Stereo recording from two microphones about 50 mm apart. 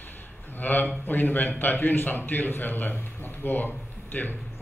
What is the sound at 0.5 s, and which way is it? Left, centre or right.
A man's voice, left.